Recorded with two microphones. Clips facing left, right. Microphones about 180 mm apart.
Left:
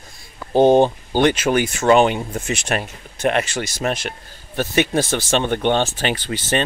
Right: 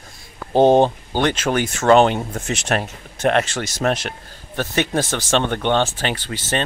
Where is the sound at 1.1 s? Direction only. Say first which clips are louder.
Left 3 dB; 10° left (ahead or behind).